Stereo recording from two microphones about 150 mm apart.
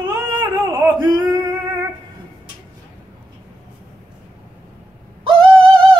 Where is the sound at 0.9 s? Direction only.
30° right (ahead or behind).